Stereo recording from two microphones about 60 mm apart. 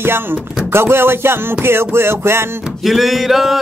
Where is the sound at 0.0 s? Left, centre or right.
Right.